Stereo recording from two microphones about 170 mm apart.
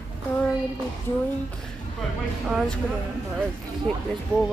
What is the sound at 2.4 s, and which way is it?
Speech, 5° right (ahead or behind).